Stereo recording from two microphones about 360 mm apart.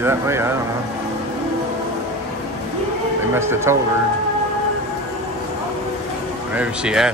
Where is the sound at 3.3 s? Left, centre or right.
Centre.